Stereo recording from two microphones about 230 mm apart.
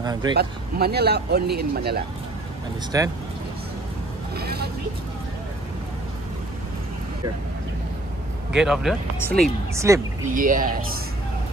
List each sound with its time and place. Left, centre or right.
0.0 s a sound: centre
0.4 s speech: right
2.9 s a woman's voice: centre
4.4 s vehicle: right
8.5 s speech: centre
9.8 s a woman's voice: centre
10.3 s speech: right